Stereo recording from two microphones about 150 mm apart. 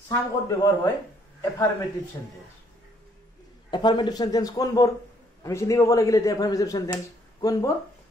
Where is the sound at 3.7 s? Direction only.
30° left (ahead or behind).